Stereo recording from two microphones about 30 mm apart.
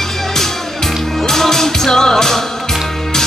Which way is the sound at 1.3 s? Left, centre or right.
Centre.